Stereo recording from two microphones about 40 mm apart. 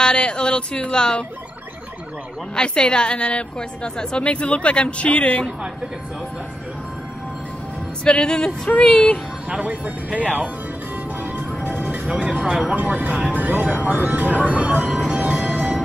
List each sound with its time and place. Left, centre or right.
0.0 s a woman's voice: left
2.5 s a woman's voice: left
8.0 s a woman's voice: left
9.6 s speech: right
11.6 s music: right
12.2 s a sound: right
12.4 s speech: centre
12.7 s speech: right
15.1 s music: right